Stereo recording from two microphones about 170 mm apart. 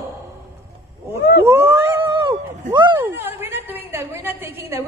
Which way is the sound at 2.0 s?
30° right (ahead or behind).